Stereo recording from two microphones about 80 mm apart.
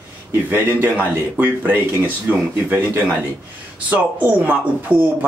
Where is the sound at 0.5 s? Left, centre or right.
Right.